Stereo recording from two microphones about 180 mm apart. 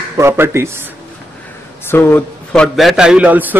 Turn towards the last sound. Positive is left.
turn(degrees=-10)  # may be behind; listen again after turning